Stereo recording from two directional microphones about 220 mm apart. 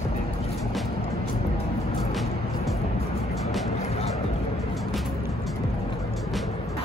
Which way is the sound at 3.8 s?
30° left (ahead or behind).